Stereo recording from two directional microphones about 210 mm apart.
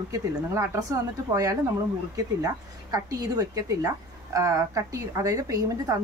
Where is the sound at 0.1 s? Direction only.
15° right (ahead or behind).